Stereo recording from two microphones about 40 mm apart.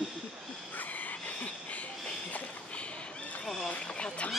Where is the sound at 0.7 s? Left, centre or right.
Left.